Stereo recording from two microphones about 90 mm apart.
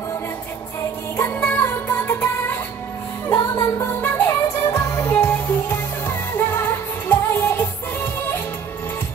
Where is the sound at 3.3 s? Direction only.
40° left (ahead or behind).